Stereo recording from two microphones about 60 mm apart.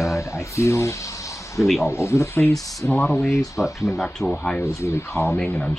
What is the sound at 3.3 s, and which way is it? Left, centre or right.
Speech, left.